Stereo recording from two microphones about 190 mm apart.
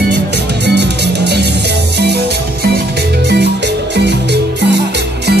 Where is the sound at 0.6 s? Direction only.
65° right (ahead or behind).